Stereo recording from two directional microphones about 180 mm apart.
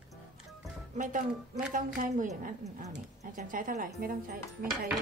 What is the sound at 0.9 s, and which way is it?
Speech, 45° right (ahead or behind).